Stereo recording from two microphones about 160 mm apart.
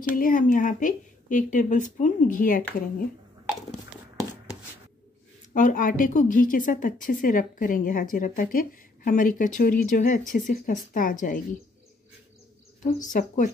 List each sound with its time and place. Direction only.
0.2 s a woman's voice: 55° left (ahead or behind)
5.5 s speech: 55° left (ahead or behind)
12.8 s a woman's voice: 50° left (ahead or behind)